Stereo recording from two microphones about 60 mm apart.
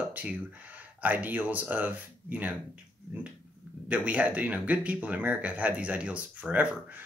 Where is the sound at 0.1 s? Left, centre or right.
Right.